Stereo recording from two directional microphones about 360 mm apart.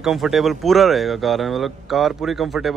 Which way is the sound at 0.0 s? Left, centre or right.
Centre.